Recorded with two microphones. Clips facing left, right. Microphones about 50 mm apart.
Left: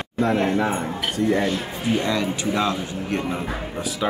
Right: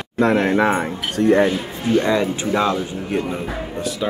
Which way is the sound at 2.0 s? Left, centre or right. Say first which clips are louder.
Right 4 dB; right.